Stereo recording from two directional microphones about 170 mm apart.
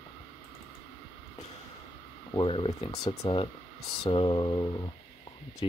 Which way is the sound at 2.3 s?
30° left (ahead or behind).